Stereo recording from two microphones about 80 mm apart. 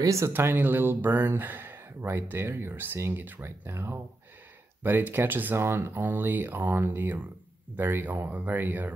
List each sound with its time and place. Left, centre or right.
0.0 s speech: right
0.3 s speech: right